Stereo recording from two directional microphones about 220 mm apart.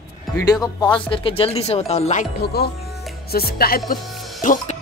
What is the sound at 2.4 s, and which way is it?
Speech, 45° left (ahead or behind).